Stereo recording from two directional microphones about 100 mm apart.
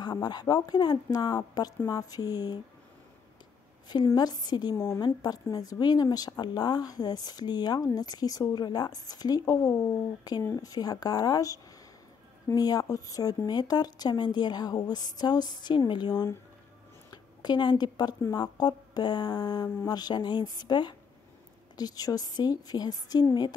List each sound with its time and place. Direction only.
0.0 s a woman's voice: 45° left (ahead or behind)
3.9 s a woman's voice: 40° left (ahead or behind)
4.7 s a woman's voice: 30° left (ahead or behind)
5.0 s a woman's voice: 40° left (ahead or behind)